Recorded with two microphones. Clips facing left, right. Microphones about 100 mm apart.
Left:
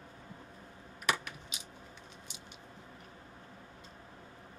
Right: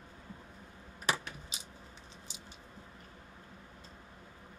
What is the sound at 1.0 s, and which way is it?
Typing, 30° right (ahead or behind).